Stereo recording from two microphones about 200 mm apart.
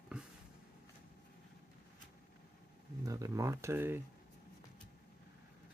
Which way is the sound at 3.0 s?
15° right (ahead or behind).